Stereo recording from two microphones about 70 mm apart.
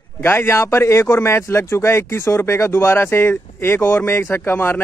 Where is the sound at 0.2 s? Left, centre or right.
Left.